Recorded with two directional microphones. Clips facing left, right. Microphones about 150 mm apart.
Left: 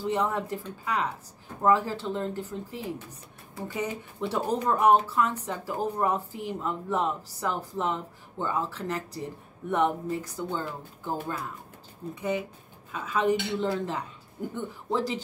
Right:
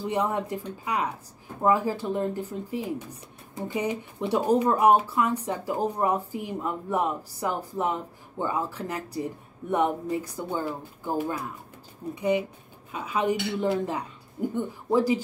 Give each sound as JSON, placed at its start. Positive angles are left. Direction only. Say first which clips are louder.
{"t": 0.0, "sound": "speech", "louder": "right 1 dB", "side_deg": -15}